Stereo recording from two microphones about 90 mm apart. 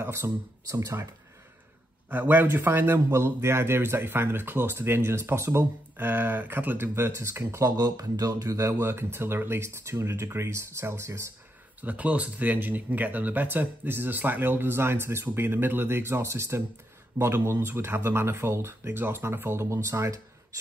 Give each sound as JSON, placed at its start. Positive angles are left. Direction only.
{"t": 0.0, "sound": "speech", "side_deg": -30}
{"t": 2.0, "sound": "a man's voice", "side_deg": -20}
{"t": 7.7, "sound": "speech", "side_deg": -45}
{"t": 11.8, "sound": "a man's voice", "side_deg": -15}